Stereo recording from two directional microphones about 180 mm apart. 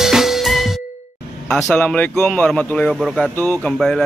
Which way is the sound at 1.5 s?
5° left (ahead or behind).